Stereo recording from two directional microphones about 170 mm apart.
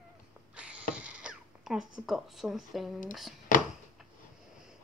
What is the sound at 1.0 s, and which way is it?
Speech, 5° right (ahead or behind).